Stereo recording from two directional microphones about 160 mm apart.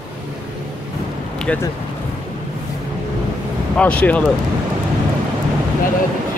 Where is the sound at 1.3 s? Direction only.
5° left (ahead or behind).